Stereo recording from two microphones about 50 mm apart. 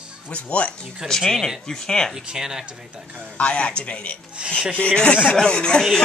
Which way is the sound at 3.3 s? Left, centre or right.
Left.